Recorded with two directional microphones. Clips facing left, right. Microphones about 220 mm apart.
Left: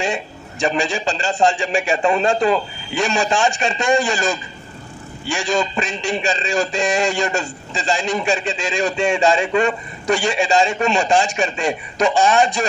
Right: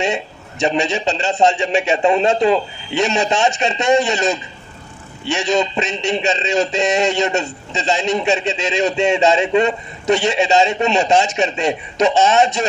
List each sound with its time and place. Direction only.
0.0 s a man's voice: 25° right (ahead or behind)